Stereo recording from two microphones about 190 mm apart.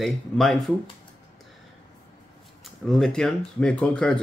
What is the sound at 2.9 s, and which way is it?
Speech, centre (ahead or behind).